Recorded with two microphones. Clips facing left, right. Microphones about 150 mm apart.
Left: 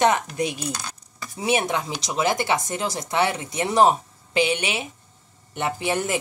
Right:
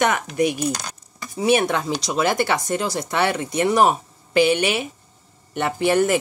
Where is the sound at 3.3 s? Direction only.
65° right (ahead or behind).